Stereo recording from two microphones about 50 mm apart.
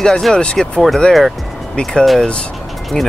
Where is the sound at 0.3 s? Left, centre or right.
Centre.